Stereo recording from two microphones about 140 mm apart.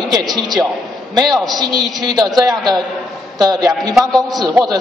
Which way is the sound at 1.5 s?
30° right (ahead or behind).